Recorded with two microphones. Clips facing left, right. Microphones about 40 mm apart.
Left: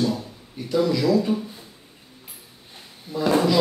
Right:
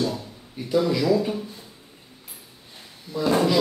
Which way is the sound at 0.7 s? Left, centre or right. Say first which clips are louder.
Left 1 dB; centre.